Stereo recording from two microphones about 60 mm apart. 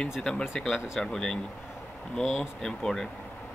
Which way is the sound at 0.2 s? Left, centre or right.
Centre.